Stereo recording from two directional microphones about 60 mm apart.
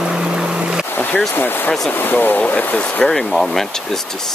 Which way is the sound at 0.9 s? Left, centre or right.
Left.